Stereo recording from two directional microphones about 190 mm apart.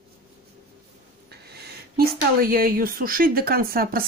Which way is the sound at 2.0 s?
50° right (ahead or behind).